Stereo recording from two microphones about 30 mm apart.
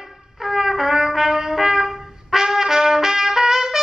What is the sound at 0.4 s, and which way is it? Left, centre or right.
Trumpet, centre.